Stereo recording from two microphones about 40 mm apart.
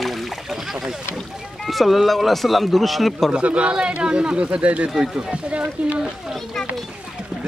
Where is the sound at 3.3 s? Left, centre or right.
Right.